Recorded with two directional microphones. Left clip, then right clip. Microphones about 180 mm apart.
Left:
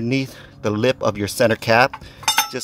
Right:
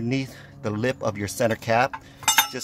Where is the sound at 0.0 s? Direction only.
15° left (ahead or behind).